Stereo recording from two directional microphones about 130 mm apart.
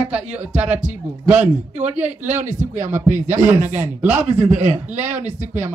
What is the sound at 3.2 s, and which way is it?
Speech, 15° right (ahead or behind).